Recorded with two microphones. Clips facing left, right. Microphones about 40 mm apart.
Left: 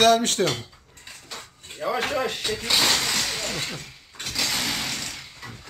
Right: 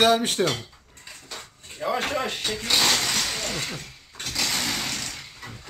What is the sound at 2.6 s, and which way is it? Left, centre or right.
Speech, centre.